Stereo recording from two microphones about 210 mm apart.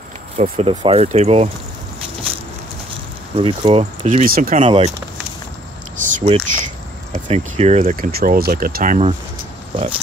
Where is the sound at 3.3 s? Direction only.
25° right (ahead or behind).